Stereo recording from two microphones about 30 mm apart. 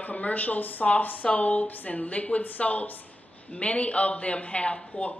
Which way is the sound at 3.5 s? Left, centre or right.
Left.